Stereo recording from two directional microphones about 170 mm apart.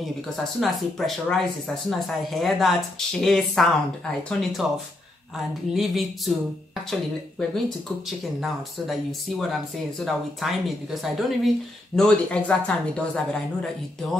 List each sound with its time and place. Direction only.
0.4 s speech: centre (ahead or behind)
5.8 s speech: centre (ahead or behind)
9.4 s speech: centre (ahead or behind)